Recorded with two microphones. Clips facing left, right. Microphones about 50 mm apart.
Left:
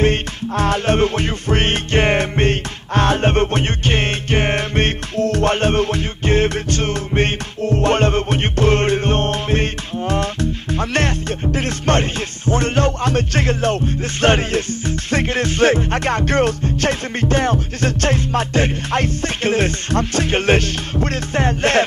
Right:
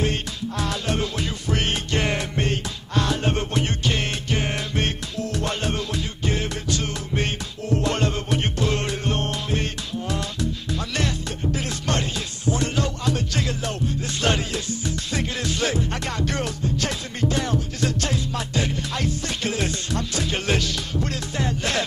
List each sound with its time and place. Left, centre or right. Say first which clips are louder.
0.0 s music: left 8 dB; left